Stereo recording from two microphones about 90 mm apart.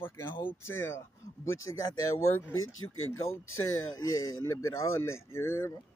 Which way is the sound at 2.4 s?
25° left (ahead or behind).